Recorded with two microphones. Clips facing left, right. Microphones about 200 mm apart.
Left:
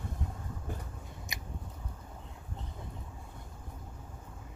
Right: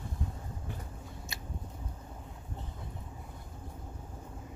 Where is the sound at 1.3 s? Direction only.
15° left (ahead or behind).